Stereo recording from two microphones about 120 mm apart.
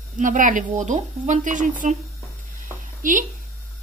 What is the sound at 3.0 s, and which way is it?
Speech, 90° right.